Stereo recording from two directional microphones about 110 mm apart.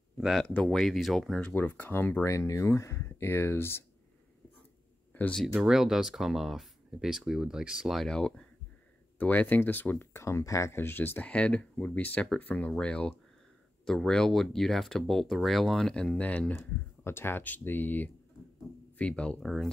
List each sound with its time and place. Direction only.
0.2 s speech: centre (ahead or behind)
0.5 s speech: 15° left (ahead or behind)
0.7 s speech: centre (ahead or behind)
1.5 s speech: 15° left (ahead or behind)
5.1 s speech: 15° left (ahead or behind)
5.4 s speech: 5° right (ahead or behind)